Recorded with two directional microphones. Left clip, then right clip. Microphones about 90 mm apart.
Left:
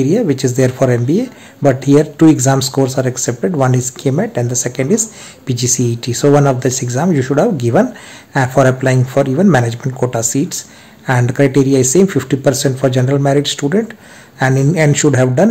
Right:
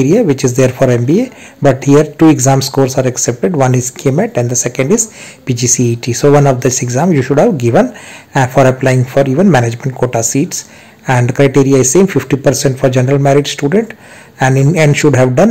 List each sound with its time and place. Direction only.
0.0 s speech: 30° right (ahead or behind)